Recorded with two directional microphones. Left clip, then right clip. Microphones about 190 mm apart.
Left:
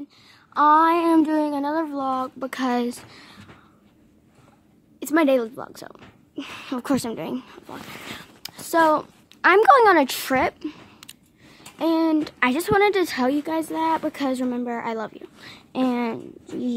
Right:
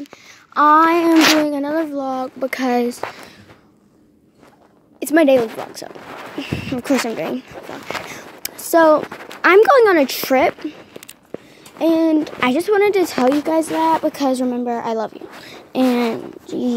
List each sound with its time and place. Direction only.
0.5 s speech: 5° right (ahead or behind)
5.0 s speech: 10° right (ahead or behind)
6.3 s speech: 10° left (ahead or behind)
8.4 s speech: centre (ahead or behind)
13.5 s speech: centre (ahead or behind)